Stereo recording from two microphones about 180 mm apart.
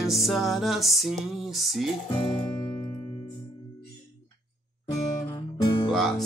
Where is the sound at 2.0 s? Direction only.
25° left (ahead or behind).